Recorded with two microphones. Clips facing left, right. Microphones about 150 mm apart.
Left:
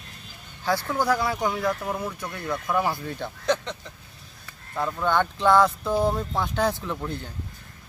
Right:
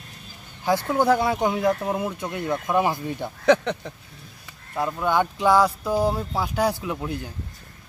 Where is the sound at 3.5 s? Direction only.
65° right (ahead or behind).